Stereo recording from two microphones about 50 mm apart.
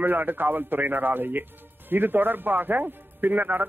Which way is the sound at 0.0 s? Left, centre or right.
Right.